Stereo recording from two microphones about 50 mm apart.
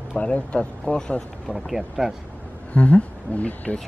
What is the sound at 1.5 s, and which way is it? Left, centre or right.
Speech, centre.